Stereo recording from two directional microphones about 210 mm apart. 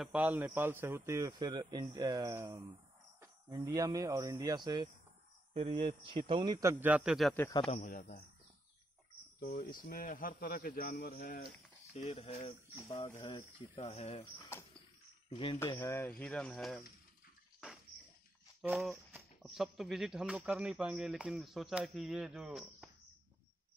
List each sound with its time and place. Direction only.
0.0 s a man's voice: 5° right (ahead or behind)
7.7 s speech: 40° left (ahead or behind)
9.4 s speech: 45° left (ahead or behind)
11.9 s speech: 30° left (ahead or behind)
12.7 s speech: 15° left (ahead or behind)
13.7 s speech: 30° left (ahead or behind)
14.5 s speech: 10° left (ahead or behind)
15.2 s speech: 25° left (ahead or behind)
15.6 s speech: 15° left (ahead or behind)
18.6 s speech: centre (ahead or behind)